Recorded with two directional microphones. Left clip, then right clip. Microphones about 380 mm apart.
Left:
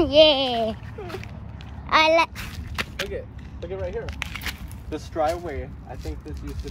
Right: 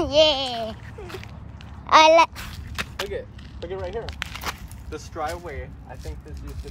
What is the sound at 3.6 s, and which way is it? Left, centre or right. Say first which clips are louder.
Speech: even; centre.